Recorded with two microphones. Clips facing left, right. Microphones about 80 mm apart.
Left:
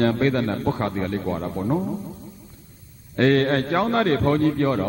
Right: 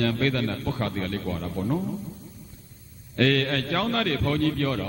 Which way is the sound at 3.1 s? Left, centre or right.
Left.